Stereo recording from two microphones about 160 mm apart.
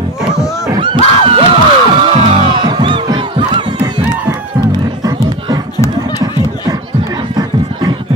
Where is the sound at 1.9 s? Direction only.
35° right (ahead or behind).